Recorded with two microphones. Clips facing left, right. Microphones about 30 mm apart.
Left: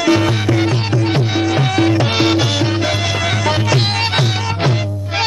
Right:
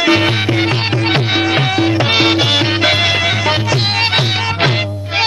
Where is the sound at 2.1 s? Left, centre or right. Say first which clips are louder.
Right 3 dB; right.